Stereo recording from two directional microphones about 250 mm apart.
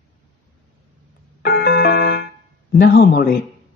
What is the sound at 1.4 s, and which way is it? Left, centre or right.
Keyboard, left.